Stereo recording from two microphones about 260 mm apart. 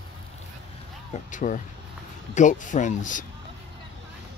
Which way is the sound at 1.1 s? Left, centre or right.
Left.